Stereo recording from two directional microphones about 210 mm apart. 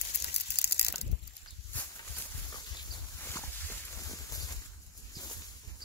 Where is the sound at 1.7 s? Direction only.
10° left (ahead or behind).